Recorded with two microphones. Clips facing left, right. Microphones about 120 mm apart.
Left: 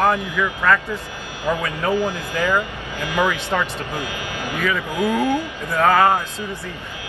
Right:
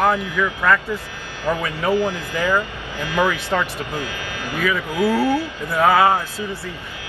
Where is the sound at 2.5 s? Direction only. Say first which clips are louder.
Even; 15° left (ahead or behind).